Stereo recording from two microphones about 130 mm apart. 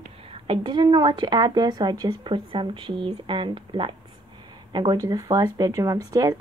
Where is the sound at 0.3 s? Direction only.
40° right (ahead or behind).